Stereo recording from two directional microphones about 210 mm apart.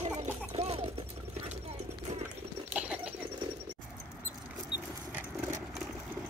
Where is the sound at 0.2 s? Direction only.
30° right (ahead or behind).